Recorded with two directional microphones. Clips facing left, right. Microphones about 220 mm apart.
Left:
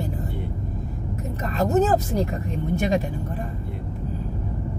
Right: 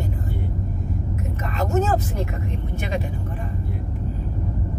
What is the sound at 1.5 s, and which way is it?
Speech, 35° left (ahead or behind).